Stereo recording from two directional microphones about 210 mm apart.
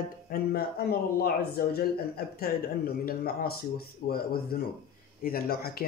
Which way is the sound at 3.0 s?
45° left (ahead or behind).